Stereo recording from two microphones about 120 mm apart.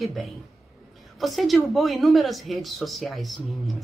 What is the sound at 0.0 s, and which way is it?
Speech, centre (ahead or behind).